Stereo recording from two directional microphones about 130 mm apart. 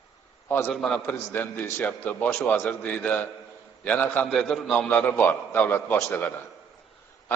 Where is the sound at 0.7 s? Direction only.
Centre (ahead or behind).